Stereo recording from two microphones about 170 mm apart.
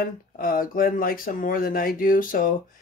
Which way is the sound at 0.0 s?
55° left (ahead or behind).